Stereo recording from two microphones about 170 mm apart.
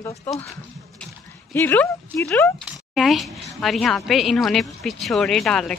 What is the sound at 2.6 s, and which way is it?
A woman's voice, centre (ahead or behind).